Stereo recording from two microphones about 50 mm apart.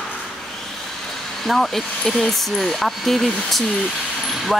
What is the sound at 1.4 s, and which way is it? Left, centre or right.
Speech, centre.